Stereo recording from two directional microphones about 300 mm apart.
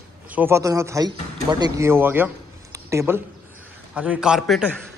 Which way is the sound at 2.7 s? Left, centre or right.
Centre.